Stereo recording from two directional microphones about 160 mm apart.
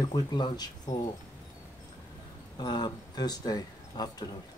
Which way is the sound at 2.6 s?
25° left (ahead or behind).